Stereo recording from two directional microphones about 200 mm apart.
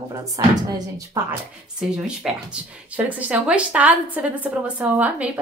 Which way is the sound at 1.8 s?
5° right (ahead or behind).